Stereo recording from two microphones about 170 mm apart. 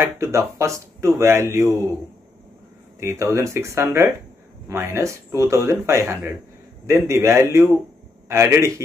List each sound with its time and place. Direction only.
0.0 s speech: 15° right (ahead or behind)
3.0 s speech: 15° right (ahead or behind)